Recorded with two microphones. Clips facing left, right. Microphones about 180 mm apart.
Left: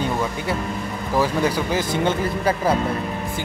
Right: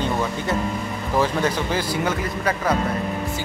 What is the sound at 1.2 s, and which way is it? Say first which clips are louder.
Speech: left 1 dB; 10° left (ahead or behind).